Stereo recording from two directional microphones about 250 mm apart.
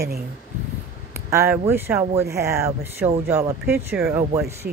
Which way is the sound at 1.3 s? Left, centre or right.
Centre.